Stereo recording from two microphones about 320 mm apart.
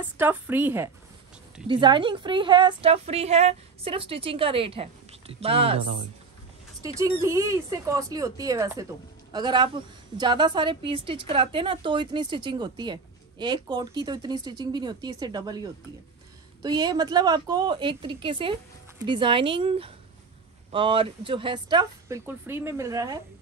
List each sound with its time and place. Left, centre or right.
0.0 s a woman's voice: centre